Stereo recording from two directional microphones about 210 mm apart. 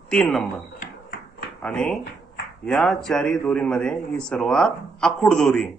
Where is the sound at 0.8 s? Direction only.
45° left (ahead or behind).